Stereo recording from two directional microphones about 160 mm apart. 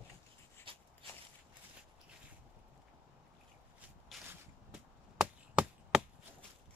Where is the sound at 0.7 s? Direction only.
35° right (ahead or behind).